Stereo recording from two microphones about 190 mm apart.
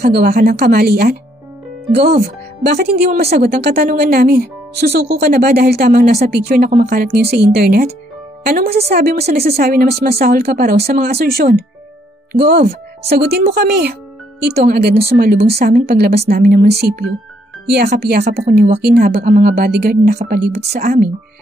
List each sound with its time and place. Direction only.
0.0 s speech: 55° right (ahead or behind)
18.0 s speech: 55° right (ahead or behind)
19.2 s speech: 40° right (ahead or behind)
19.5 s speech: 55° right (ahead or behind)